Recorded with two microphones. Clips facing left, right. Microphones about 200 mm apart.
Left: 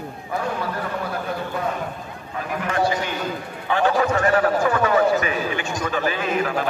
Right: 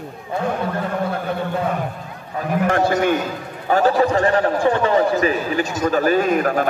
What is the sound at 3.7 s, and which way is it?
A man's voice, 40° right (ahead or behind).